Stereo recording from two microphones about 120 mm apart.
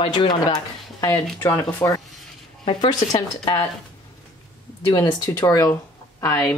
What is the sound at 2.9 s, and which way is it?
Speech, 30° left (ahead or behind).